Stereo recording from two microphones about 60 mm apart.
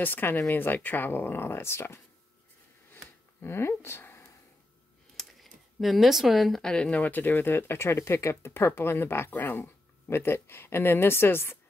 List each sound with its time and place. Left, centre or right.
0.0 s speech: left
3.4 s speech: left
5.1 s a sound: centre
6.6 s speech: centre
7.0 s speech: left
8.5 s speech: left
9.6 s speech: left